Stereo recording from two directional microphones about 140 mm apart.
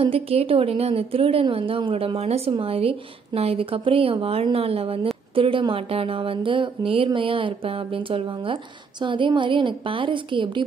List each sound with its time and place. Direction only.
0.0 s a woman's voice: 45° right (ahead or behind)